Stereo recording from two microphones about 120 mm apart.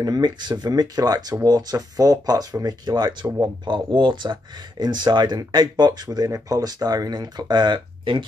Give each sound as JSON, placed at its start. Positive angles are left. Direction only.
{"t": 0.0, "sound": "speech", "side_deg": -35}